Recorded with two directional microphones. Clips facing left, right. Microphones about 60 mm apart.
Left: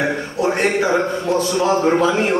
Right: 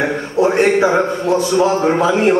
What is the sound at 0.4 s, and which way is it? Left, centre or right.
A man's voice, right.